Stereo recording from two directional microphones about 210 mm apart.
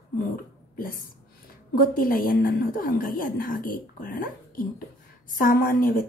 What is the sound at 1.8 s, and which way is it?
A woman's voice, 40° left (ahead or behind).